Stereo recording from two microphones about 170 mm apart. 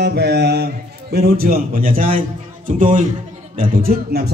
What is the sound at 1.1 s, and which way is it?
A man's voice, 65° right (ahead or behind).